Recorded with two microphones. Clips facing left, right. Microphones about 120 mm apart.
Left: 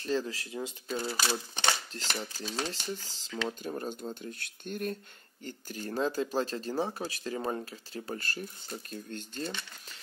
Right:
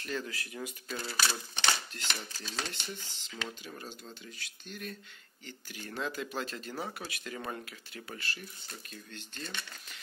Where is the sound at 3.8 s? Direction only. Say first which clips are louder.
Left 9 dB; 50° left (ahead or behind).